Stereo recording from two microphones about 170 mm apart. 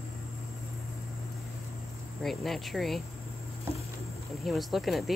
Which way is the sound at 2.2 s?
Centre (ahead or behind).